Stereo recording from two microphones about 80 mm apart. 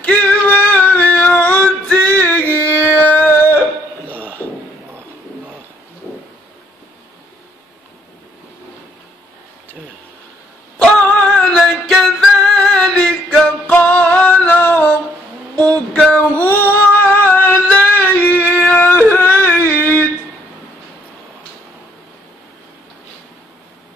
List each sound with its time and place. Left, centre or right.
0.0 s female singing: centre
2.9 s a sound: left
10.8 s music: centre
15.5 s a sound: centre
16.3 s female singing: left
17.2 s singing: left
17.7 s music: left
18.7 s yodeling: left